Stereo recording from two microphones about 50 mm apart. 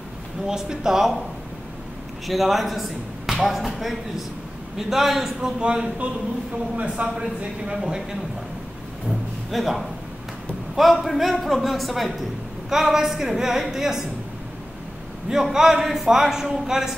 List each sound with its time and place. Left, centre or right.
0.5 s a man's voice: centre
2.2 s a man's voice: centre
5.6 s a man's voice: right
9.5 s a man's voice: centre
15.5 s a man's voice: centre